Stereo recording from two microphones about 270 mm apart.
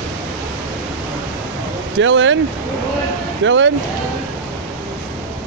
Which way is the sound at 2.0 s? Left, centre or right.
Right.